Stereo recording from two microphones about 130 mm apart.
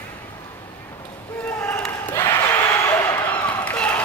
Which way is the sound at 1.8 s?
15° left (ahead or behind).